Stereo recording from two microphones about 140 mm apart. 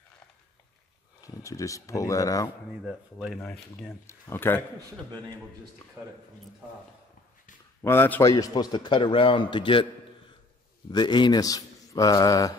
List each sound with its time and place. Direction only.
1.2 s speech: 25° left (ahead or behind)
2.8 s speech: 5° right (ahead or behind)
4.1 s a man's voice: 15° left (ahead or behind)
6.0 s speech: 20° right (ahead or behind)
7.8 s a man's voice: 15° left (ahead or behind); by 9.8 s 35° left (ahead or behind)
10.9 s speech: 30° left (ahead or behind)